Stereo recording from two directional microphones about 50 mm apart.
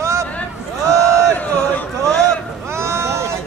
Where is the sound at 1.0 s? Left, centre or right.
Left.